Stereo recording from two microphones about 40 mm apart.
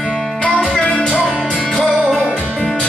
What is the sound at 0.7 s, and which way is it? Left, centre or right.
Music, left.